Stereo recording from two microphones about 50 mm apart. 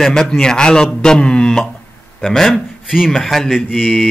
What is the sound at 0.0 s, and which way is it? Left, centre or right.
Speech, centre.